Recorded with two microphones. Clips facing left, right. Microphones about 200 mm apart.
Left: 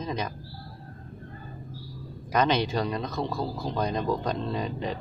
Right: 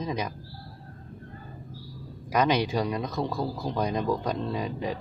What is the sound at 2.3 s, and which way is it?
Speech, 10° right (ahead or behind).